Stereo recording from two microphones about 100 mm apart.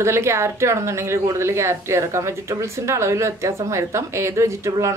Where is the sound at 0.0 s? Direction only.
30° right (ahead or behind).